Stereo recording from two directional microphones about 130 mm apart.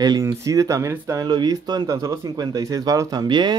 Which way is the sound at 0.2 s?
25° right (ahead or behind).